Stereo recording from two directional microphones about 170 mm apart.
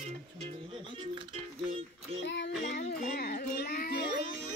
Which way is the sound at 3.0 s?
65° left (ahead or behind).